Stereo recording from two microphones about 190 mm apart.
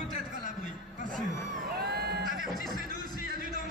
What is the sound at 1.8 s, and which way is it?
Crowd, 60° right (ahead or behind).